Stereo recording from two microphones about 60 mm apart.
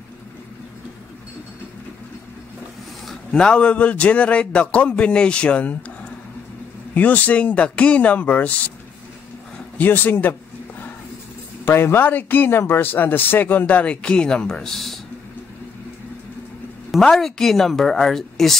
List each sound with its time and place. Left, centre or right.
3.3 s a man's voice: centre
6.9 s a man's voice: left
9.8 s speech: left
11.6 s speech: left; by 15.0 s centre
17.0 s a woman's voice: centre